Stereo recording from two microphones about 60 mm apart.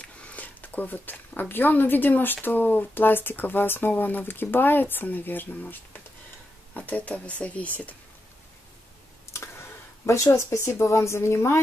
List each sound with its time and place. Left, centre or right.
0.0 s speech: left
9.3 s a sound: left
10.2 s speech: left